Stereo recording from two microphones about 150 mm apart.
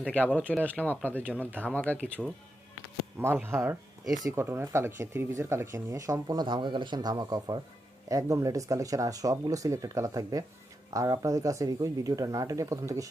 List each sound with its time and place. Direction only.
0.0 s speech: 5° left (ahead or behind)
3.2 s speech: 15° right (ahead or behind)
4.0 s speech: centre (ahead or behind)
4.3 s speech: 15° right (ahead or behind)